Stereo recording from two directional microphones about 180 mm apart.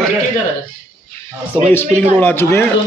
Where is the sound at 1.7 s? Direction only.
10° left (ahead or behind).